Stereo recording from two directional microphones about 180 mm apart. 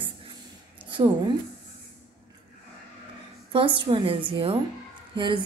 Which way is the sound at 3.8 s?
30° right (ahead or behind).